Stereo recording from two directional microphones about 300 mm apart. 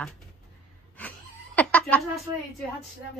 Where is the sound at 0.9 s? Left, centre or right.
Centre.